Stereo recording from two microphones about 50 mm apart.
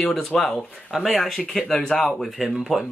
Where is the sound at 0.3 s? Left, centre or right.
Centre.